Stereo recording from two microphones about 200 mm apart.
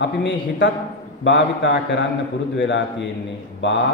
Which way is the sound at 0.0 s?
65° left (ahead or behind).